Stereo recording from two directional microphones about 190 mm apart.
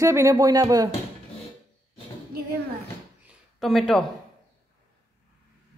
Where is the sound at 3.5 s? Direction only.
Centre (ahead or behind).